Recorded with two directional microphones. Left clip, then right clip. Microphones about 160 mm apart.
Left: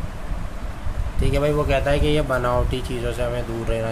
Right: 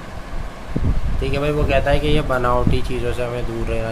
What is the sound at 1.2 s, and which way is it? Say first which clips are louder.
Speech: even; 25° left (ahead or behind).